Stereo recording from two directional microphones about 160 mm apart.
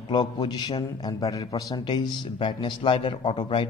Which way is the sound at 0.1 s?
25° left (ahead or behind).